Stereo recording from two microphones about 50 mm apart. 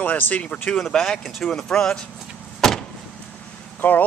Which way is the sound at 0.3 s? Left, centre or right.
Left.